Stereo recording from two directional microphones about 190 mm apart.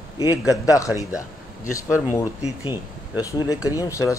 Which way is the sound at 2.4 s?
30° left (ahead or behind).